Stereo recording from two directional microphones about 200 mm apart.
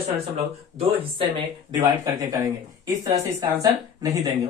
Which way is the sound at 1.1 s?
25° right (ahead or behind).